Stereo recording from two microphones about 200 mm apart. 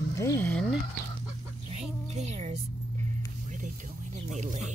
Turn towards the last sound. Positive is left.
turn(degrees=-35)  # may be behind; listen again after turning